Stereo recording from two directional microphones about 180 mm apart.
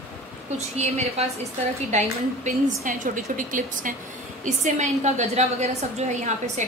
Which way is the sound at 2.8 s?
45° right (ahead or behind).